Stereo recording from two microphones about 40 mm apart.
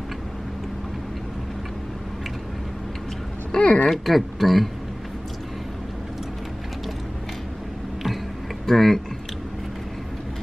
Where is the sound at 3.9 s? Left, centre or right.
Centre.